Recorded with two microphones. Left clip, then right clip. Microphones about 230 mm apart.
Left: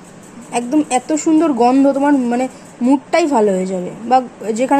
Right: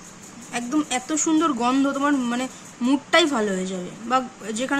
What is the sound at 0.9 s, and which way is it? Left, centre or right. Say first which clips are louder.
A woman's voice: left 8 dB; centre.